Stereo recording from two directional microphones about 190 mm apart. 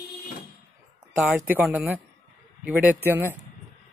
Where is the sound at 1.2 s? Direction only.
10° right (ahead or behind).